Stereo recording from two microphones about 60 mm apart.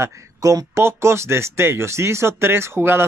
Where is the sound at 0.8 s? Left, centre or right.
Right.